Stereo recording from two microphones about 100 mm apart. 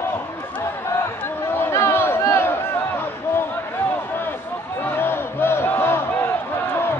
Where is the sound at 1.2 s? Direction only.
25° left (ahead or behind).